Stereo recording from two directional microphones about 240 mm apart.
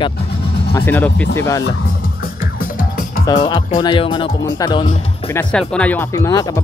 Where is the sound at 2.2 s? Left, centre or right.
Left.